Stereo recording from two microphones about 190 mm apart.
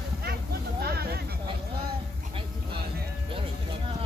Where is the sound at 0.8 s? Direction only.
55° right (ahead or behind).